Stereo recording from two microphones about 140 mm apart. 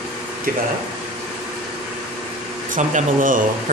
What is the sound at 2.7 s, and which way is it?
Speech, 70° right (ahead or behind).